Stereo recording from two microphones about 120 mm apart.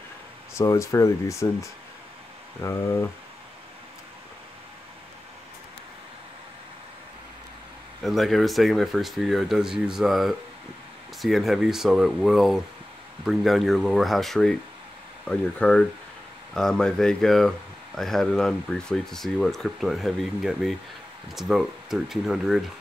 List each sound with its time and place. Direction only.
0.6 s speech: 25° left (ahead or behind)
8.0 s speech: centre (ahead or behind)